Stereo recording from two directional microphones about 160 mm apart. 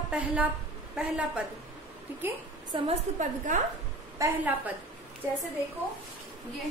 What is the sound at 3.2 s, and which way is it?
Speech, 50° right (ahead or behind).